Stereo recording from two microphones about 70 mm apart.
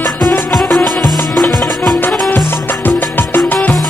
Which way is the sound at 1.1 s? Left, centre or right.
Centre.